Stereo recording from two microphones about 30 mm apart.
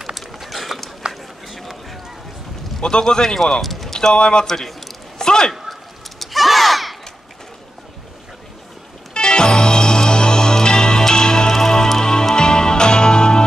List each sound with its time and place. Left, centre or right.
0.1 s run: centre
1.0 s run: right
2.8 s speech: left
3.6 s a sound: centre
4.1 s speech: left
4.5 s speech: centre
5.2 s a sound: left
5.7 s a sound: centre
9.1 s music: left